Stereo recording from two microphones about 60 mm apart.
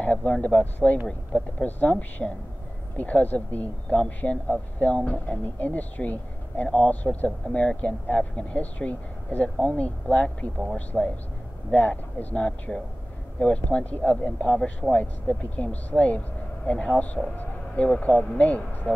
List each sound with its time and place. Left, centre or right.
0.0 s speech: left
10.9 s speech: centre
11.7 s speech: left
14.5 s speech: centre
18.7 s speech: left